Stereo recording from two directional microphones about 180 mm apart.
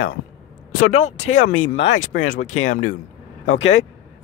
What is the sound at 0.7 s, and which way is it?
Speech, 45° left (ahead or behind).